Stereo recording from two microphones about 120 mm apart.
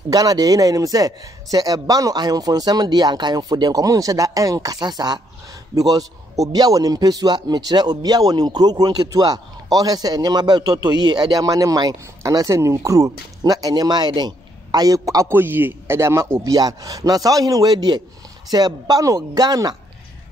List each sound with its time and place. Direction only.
0.1 s a man's voice: 30° right (ahead or behind)